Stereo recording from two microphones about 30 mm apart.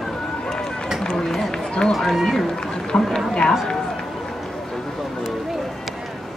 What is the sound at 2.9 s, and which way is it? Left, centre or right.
Speech, left.